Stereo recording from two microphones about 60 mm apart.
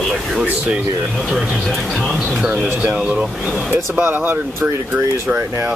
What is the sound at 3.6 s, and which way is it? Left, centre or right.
Speech, right.